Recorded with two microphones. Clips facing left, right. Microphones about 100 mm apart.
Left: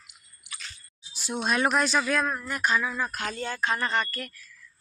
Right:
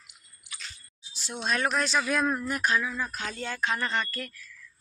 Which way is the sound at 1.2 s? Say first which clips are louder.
Left 3 dB; 10° left (ahead or behind).